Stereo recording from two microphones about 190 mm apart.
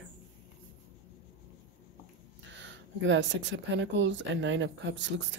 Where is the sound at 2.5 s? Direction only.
75° right (ahead or behind).